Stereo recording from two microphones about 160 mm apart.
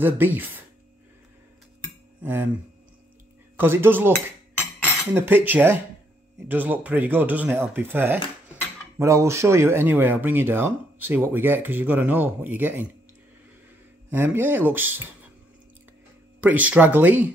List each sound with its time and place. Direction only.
0.0 s speech: 10° right (ahead or behind)
2.2 s speech: 15° right (ahead or behind)
3.5 s speech: 15° right (ahead or behind)
4.6 s cutlery: 15° left (ahead or behind)
5.1 s speech: 15° right (ahead or behind)
14.1 s speech: 15° right (ahead or behind)
16.3 s speech: 10° right (ahead or behind)